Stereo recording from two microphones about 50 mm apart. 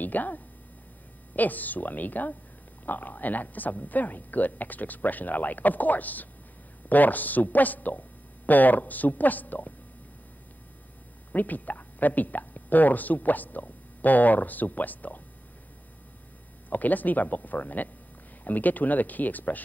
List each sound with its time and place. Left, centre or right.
0.0 s speech: left
11.3 s speech: left
16.6 s speech: left